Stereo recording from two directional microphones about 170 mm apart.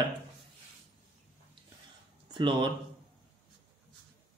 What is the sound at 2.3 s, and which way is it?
Speech, 30° right (ahead or behind).